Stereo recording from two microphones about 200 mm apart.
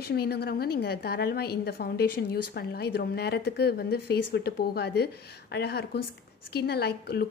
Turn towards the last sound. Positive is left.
turn(degrees=55)  # may be behind; listen again after turning